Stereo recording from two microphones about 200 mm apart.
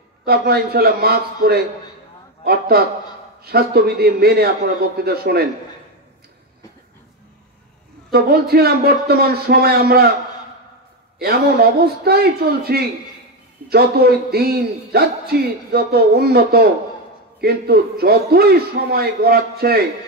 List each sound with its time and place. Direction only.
0.2 s a man's voice: 50° right (ahead or behind)
8.1 s a man's voice: 50° right (ahead or behind)
11.1 s a man's voice: 50° right (ahead or behind)